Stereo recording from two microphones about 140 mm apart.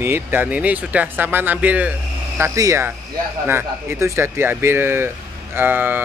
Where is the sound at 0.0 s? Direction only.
15° right (ahead or behind).